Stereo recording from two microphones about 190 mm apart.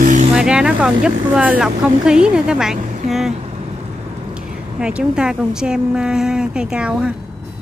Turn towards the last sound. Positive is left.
turn(degrees=-5)  # may be behind; listen again after turning